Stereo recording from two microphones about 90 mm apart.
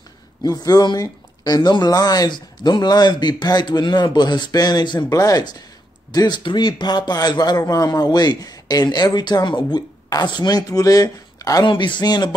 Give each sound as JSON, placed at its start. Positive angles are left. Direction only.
{"t": 0.4, "sound": "a man's voice", "side_deg": 45}
{"t": 5.1, "sound": "a man's voice", "side_deg": 40}
{"t": 11.6, "sound": "speech", "side_deg": 60}